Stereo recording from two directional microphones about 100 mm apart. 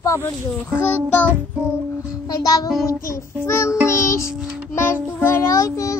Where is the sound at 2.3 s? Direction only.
40° left (ahead or behind).